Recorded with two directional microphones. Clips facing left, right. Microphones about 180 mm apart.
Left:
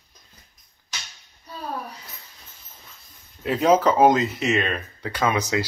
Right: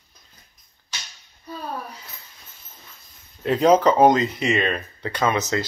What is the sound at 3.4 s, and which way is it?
Speech, 5° left (ahead or behind).